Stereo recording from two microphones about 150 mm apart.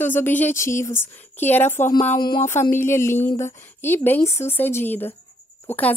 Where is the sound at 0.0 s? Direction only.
15° left (ahead or behind).